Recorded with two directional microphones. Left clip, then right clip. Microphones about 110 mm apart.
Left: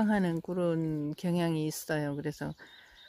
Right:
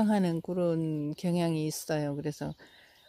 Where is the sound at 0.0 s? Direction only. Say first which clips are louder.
Right 1 dB; 10° right (ahead or behind).